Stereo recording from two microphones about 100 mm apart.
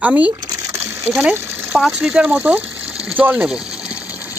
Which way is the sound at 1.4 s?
20° right (ahead or behind).